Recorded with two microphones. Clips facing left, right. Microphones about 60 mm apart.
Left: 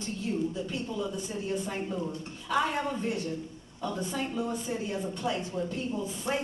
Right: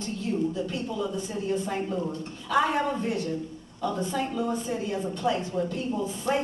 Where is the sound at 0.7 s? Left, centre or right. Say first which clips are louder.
Right 3 dB; right.